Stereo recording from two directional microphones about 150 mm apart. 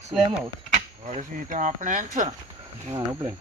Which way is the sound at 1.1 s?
55° right (ahead or behind).